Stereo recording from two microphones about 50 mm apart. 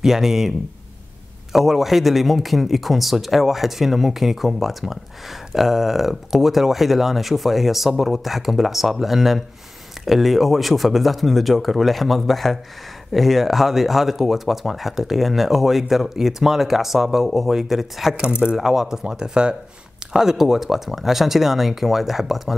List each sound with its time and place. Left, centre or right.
0.0 s speech: centre
18.2 s speech: centre